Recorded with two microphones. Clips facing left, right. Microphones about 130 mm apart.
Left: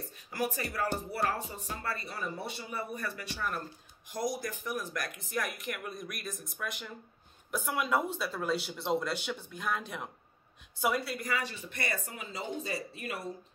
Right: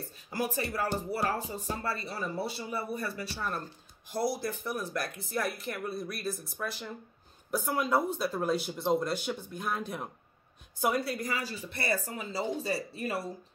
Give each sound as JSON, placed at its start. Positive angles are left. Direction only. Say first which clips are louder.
{"t": 0.3, "sound": "speech", "louder": "right 2 dB", "side_deg": -35}